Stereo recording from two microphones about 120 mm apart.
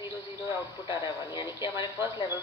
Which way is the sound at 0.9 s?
35° left (ahead or behind).